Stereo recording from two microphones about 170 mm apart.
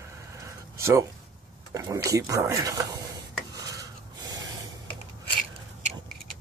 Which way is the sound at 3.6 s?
20° right (ahead or behind).